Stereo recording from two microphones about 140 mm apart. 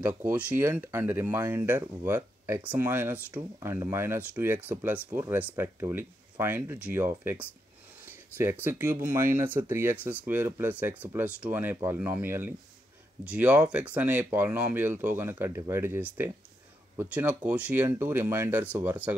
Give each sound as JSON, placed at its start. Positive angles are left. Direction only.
{"t": 0.0, "sound": "speech", "side_deg": -10}
{"t": 8.6, "sound": "speech", "side_deg": -15}